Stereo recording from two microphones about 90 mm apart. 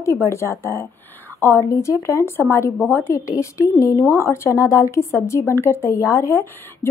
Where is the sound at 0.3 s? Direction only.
30° left (ahead or behind).